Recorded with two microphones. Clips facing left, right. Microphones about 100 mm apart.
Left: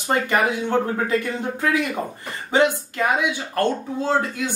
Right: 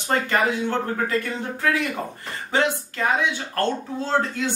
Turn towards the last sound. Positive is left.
turn(degrees=10)  # may be behind; listen again after turning